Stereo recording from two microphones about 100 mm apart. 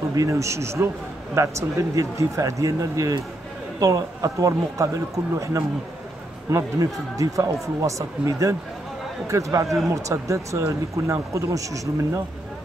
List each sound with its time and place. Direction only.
0.1 s speech: 35° right (ahead or behind)